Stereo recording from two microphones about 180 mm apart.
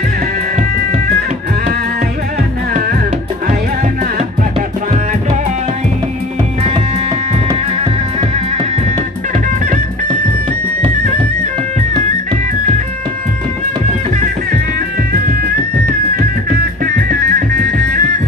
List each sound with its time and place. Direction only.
15.8 s music: 55° right (ahead or behind)